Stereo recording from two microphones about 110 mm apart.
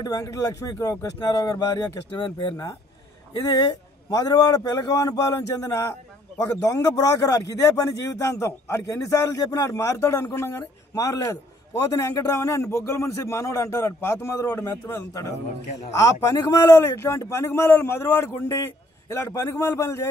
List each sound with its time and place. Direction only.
0.0 s a man's voice: 30° left (ahead or behind)